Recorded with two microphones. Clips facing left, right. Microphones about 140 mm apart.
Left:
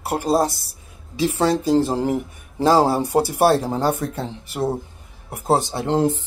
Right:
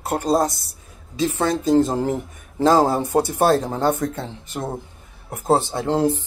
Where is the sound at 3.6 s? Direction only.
10° left (ahead or behind).